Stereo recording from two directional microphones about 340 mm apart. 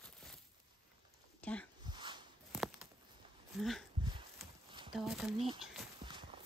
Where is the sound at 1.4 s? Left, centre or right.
Centre.